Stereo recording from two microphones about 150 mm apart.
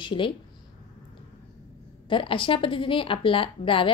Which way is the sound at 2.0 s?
35° left (ahead or behind).